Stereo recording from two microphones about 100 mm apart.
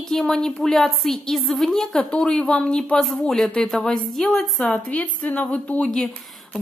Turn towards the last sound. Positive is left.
turn(degrees=5)  # may be behind; listen again after turning